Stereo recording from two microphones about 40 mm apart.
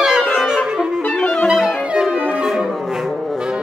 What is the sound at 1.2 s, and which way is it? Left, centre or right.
Clarinet, left.